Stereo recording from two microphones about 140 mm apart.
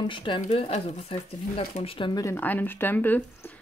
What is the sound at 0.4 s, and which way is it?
Speech, 50° left (ahead or behind).